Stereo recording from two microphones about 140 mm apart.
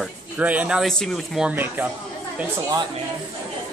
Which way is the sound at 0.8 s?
5° left (ahead or behind).